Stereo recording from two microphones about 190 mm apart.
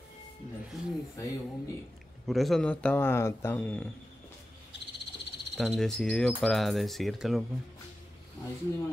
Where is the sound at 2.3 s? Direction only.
Centre (ahead or behind).